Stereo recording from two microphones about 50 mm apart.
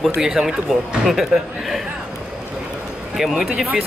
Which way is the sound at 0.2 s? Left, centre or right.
Centre.